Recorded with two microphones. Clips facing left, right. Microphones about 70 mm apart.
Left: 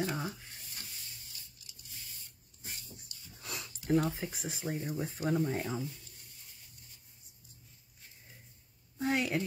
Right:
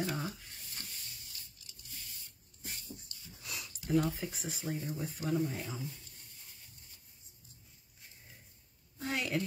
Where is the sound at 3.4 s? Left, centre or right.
Left.